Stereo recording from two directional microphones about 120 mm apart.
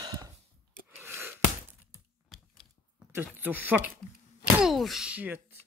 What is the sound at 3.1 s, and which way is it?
Speech, 15° right (ahead or behind).